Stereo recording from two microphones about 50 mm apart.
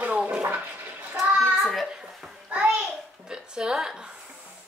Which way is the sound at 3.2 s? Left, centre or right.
Centre.